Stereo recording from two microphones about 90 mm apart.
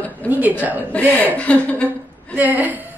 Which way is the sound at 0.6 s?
20° right (ahead or behind).